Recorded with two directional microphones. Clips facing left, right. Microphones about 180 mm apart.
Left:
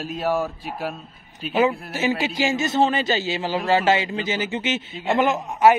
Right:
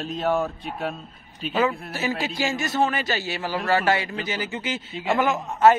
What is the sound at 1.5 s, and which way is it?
A man's voice, 20° left (ahead or behind).